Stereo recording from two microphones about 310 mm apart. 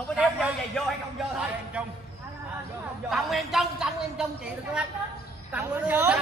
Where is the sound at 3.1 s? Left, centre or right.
Centre.